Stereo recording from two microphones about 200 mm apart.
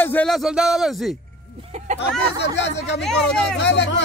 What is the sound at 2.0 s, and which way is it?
Speech, 60° left (ahead or behind).